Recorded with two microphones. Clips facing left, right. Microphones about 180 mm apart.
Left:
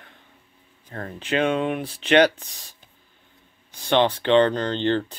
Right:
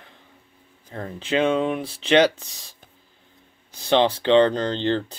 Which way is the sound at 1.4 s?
35° right (ahead or behind).